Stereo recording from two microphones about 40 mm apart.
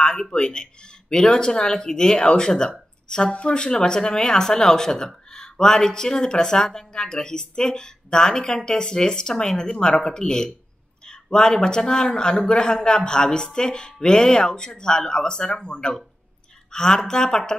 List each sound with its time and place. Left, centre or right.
0.0 s a man's voice: centre